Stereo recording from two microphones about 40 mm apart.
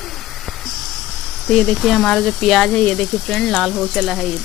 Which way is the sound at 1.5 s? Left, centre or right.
Centre.